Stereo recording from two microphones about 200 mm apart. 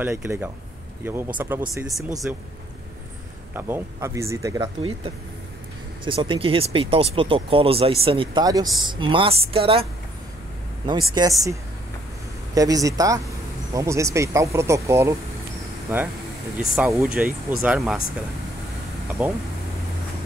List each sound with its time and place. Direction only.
0.0 s speech: 10° right (ahead or behind)
3.5 s speech: 10° right (ahead or behind)
6.0 s speech: 25° right (ahead or behind)
10.9 s speech: 20° right (ahead or behind)
12.5 s speech: 15° right (ahead or behind)
16.5 s speech: 5° right (ahead or behind)
19.2 s speech: 5° right (ahead or behind)